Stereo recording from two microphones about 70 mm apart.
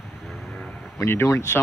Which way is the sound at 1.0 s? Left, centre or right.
Left.